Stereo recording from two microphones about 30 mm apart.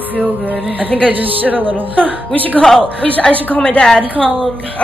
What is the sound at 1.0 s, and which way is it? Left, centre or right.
Speech, right.